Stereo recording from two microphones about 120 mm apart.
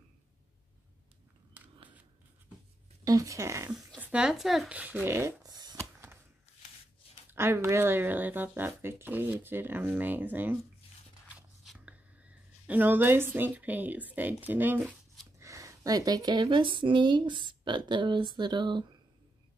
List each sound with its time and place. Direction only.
1.6 s a sound: 15° right (ahead or behind)
3.0 s speech: 30° right (ahead or behind)
4.0 s speech: 10° right (ahead or behind)
5.4 s shuffling cards: 35° right (ahead or behind)
5.8 s a sound: 25° right (ahead or behind)
7.3 s speech: 20° right (ahead or behind)
11.8 s a woman's voice: 10° right (ahead or behind)
15.3 s speech: 25° right (ahead or behind)